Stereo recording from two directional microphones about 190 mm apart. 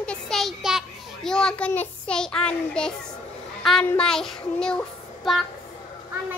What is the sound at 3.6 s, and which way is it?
A child's voice, 5° left (ahead or behind).